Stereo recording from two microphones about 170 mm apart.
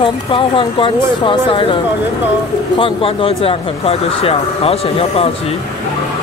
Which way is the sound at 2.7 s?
30° left (ahead or behind).